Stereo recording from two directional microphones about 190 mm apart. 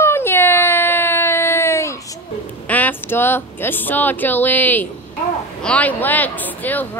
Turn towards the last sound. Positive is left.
turn(degrees=10)  # may be behind; listen again after turning